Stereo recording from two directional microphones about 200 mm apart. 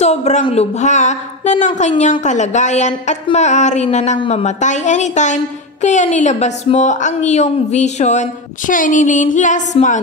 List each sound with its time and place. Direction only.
0.0 s a woman's voice: 35° left (ahead or behind)